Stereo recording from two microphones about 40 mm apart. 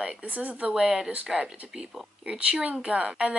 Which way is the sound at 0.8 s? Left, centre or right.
Centre.